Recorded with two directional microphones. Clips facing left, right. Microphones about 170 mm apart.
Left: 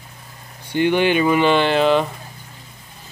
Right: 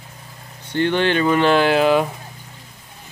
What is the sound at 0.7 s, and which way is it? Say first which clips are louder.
Speech: left 2 dB; 10° left (ahead or behind).